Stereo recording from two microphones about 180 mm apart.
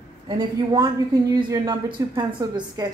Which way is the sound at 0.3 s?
25° right (ahead or behind).